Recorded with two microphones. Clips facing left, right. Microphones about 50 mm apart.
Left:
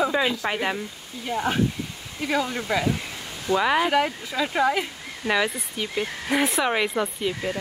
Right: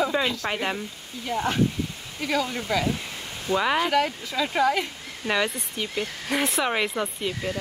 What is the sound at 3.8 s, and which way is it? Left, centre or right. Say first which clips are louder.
A woman's voice: left 1 dB; centre.